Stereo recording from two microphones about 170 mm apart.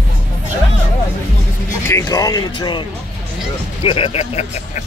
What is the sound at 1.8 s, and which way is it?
Speech, 20° left (ahead or behind).